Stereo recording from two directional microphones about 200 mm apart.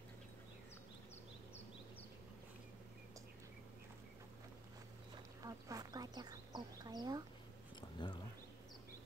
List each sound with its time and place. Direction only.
5.4 s duck: 15° right (ahead or behind)